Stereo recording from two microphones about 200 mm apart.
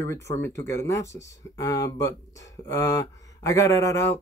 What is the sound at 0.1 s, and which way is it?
Speech, 15° left (ahead or behind).